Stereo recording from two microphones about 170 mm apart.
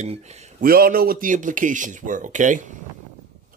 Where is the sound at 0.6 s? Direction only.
60° right (ahead or behind).